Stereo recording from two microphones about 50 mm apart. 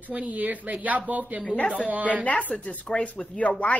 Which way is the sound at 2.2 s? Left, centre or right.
Left.